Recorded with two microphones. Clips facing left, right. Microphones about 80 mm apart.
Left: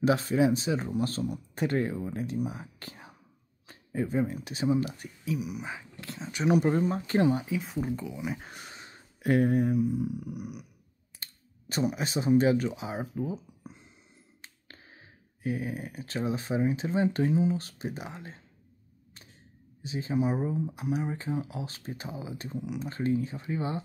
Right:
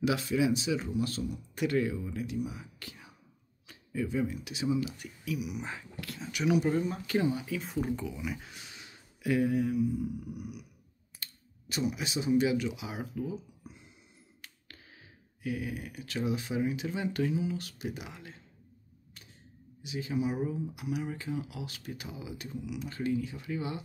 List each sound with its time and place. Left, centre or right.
0.0 s speech: left
5.6 s speech: centre
5.9 s speech: left
6.5 s speech: left
7.5 s speech: centre
8.4 s speech: left
9.9 s a sound: left
11.2 s clicking: left
11.7 s speech: left
19.8 s speech: left